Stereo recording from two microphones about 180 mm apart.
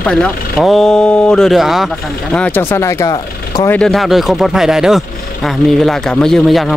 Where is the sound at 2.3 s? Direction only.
10° left (ahead or behind).